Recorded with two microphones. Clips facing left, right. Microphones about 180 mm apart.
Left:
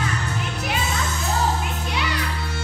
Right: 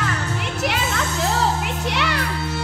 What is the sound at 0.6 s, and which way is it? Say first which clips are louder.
Music: right 4 dB; 80° right.